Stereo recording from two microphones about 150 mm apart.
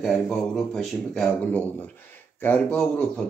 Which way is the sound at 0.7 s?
Centre (ahead or behind).